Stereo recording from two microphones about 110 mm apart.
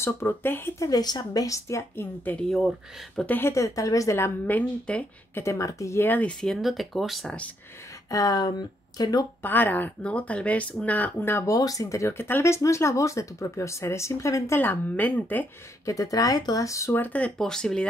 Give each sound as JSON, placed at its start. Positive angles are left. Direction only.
{"t": 0.0, "sound": "speech", "side_deg": 20}
{"t": 0.8, "sound": "a woman's voice", "side_deg": 35}
{"t": 4.5, "sound": "speech", "side_deg": 15}
{"t": 5.4, "sound": "speech", "side_deg": 30}
{"t": 8.1, "sound": "a woman's voice", "side_deg": 35}
{"t": 9.4, "sound": "speech", "side_deg": 15}
{"t": 15.8, "sound": "speech", "side_deg": 30}